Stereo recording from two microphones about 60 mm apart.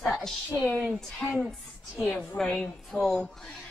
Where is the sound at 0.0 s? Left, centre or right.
Centre.